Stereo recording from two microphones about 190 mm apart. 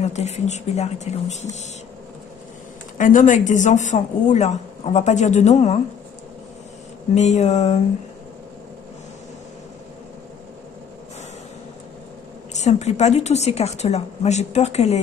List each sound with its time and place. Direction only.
0.0 s speech: 35° left (ahead or behind)
3.0 s speech: 40° left (ahead or behind)
7.2 s speech: 35° left (ahead or behind)
12.5 s speech: 35° left (ahead or behind)